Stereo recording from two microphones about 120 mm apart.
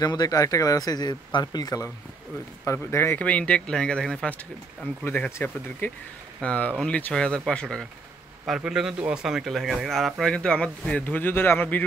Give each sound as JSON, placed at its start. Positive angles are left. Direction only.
{"t": 0.0, "sound": "speech", "side_deg": 35}
{"t": 2.6, "sound": "speech", "side_deg": 20}